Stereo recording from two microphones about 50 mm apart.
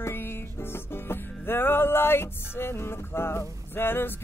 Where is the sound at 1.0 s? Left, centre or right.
Left.